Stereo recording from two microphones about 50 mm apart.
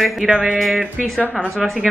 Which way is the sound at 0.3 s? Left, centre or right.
Centre.